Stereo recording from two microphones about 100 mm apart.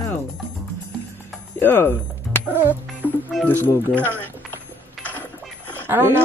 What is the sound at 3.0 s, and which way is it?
Music, 20° left (ahead or behind).